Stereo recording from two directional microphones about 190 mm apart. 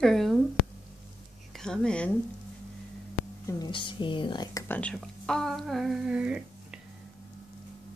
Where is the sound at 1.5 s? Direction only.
5° left (ahead or behind).